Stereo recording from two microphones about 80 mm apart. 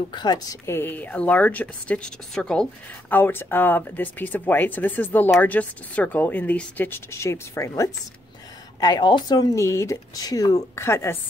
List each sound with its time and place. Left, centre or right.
0.1 s a woman's voice: left
0.7 s speech: left
2.3 s speech: centre
3.1 s speech: left
7.1 s speech: left
8.7 s a woman's voice: left
9.6 s speech: left
10.8 s speech: left